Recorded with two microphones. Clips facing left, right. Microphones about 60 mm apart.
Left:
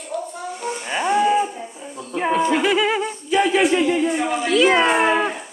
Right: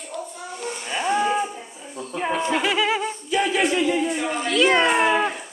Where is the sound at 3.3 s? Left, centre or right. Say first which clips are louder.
Left 5 dB; left.